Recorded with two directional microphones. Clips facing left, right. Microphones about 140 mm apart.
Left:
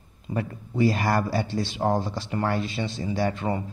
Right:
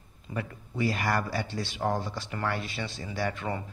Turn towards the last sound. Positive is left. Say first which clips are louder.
# left 6 dB
turn(degrees=25)  # may be behind; listen again after turning